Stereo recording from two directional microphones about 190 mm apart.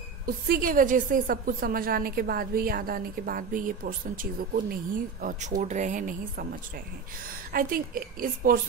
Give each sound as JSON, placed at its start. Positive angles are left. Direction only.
{"t": 0.5, "sound": "a woman's voice", "side_deg": -45}